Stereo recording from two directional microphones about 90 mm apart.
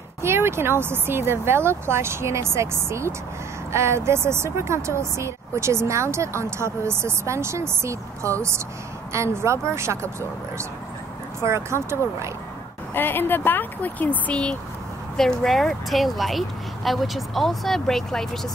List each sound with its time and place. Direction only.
0.2 s speech: 30° right (ahead or behind)
11.4 s speech: 30° right (ahead or behind)
12.9 s speech: 25° left (ahead or behind); by 18.5 s 5° left (ahead or behind)